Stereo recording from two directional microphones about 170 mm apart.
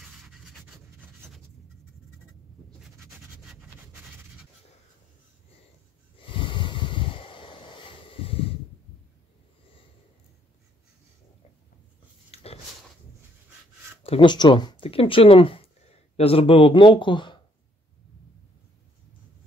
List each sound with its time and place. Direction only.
6.1 s snort: 30° left (ahead or behind)
12.3 s a sound: 35° left (ahead or behind)
14.0 s speech: 30° left (ahead or behind)